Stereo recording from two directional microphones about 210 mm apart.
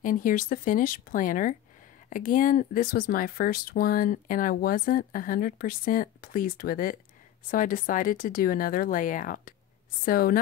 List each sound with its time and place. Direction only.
0.0 s speech: 40° left (ahead or behind)